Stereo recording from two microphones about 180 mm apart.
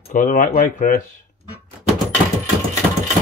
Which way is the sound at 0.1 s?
45° left (ahead or behind).